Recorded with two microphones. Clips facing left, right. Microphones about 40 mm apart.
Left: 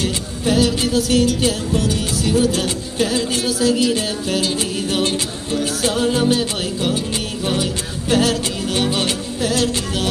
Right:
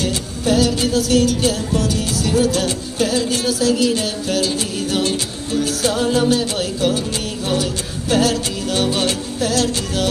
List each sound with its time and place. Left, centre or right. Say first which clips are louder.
0.0 s music: even; left
5.8 s music: even; left
8.1 s music: even; left